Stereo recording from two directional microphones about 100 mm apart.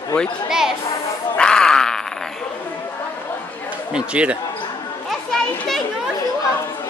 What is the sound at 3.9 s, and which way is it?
Speech, 10° right (ahead or behind).